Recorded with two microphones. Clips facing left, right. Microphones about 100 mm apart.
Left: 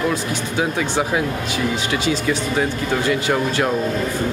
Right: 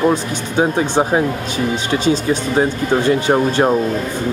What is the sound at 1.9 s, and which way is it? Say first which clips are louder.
Speech: right 4 dB; 35° right (ahead or behind).